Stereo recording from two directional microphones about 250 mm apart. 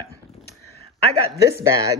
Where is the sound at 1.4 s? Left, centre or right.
Centre.